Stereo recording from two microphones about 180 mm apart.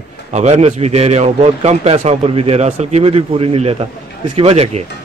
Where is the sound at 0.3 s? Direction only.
40° right (ahead or behind).